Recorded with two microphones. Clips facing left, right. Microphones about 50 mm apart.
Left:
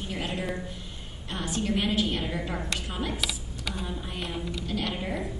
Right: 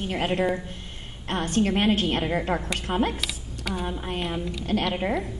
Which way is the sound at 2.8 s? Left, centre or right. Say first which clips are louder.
Right 6 dB; right.